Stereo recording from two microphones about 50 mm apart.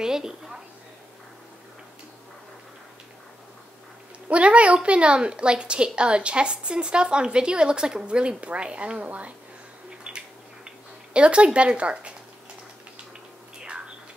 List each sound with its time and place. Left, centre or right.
0.0 s a woman's voice: centre
4.3 s speech: right
10.0 s a sound: centre
11.1 s speech: right
13.6 s bird: centre